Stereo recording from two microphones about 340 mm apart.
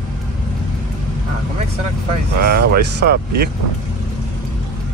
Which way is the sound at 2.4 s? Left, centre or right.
Right.